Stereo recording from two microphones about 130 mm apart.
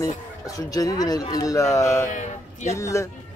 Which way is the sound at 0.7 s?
30° left (ahead or behind).